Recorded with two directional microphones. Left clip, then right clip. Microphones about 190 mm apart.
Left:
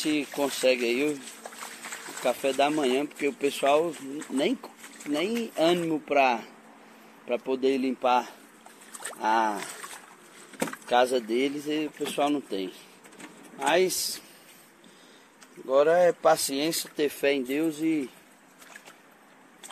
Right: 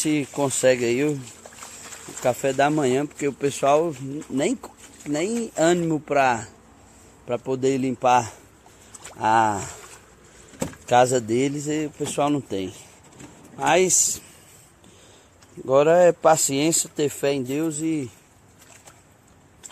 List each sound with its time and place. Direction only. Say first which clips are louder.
0.0 s speech: right 4 dB; 30° right (ahead or behind)
0.7 s speech: right 4 dB; 90° right
2.2 s speech: right 4 dB; 35° right (ahead or behind)
10.9 s speech: right 6 dB; 35° right (ahead or behind)
15.6 s speech: right 5 dB; 40° right (ahead or behind); by 18.1 s 15° right (ahead or behind)